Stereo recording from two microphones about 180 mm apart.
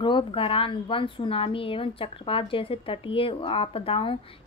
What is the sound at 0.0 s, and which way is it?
A woman's voice, 30° left (ahead or behind).